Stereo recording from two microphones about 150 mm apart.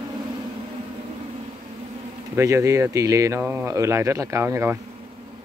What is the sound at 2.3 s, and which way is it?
Speech, 20° right (ahead or behind).